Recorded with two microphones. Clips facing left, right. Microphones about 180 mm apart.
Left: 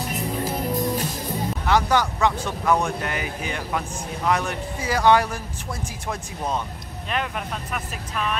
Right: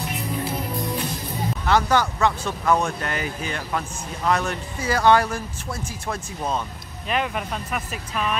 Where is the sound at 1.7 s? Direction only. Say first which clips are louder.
Right 1 dB; 15° left (ahead or behind).